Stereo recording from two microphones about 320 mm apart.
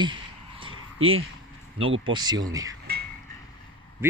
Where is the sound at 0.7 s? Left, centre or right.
Right.